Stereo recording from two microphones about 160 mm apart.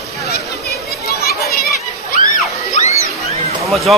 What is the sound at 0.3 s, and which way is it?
Children playing, 80° left.